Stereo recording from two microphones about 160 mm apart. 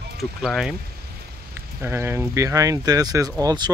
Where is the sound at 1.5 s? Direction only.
15° right (ahead or behind).